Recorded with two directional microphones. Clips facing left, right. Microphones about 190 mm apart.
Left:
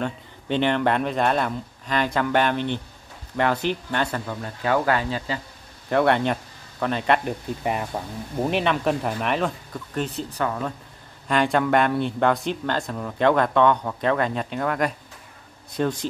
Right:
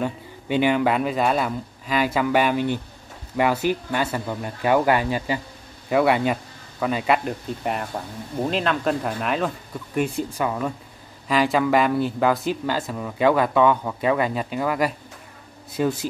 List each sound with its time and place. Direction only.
0.0 s speech: 10° right (ahead or behind)
9.9 s speech: 10° right (ahead or behind)